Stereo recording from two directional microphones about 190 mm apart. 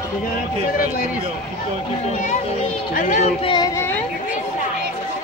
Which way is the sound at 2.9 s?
45° left (ahead or behind).